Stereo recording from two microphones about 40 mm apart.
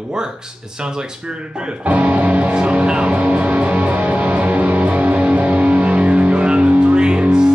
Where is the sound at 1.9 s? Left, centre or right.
Right.